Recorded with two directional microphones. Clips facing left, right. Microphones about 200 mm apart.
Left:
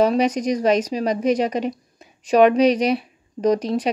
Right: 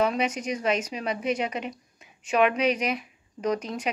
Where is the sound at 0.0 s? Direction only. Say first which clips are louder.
Left 8 dB; 35° left (ahead or behind).